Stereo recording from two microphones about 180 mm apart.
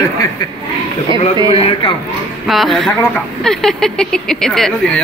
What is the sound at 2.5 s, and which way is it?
Speech, centre (ahead or behind).